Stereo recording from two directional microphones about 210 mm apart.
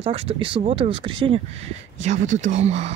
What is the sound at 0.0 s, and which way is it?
Speech, 25° right (ahead or behind).